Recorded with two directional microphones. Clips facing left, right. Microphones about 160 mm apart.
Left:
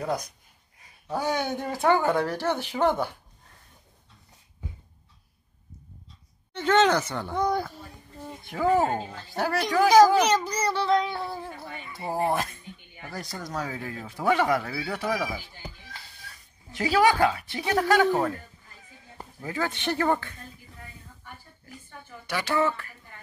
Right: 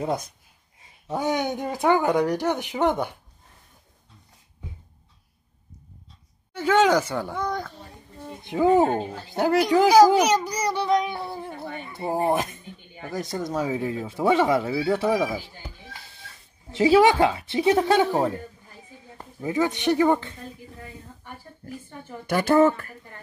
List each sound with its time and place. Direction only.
0.0 s speech: 25° right (ahead or behind)
6.5 s a child's voice: 10° right (ahead or behind)
7.3 s a child's voice: 10° left (ahead or behind)
8.3 s a child's voice: 20° right (ahead or behind)
11.6 s speech: 55° right (ahead or behind)
12.0 s speech: 20° right (ahead or behind)
16.7 s speech: 25° right (ahead or behind)
22.1 s speech: 50° right (ahead or behind)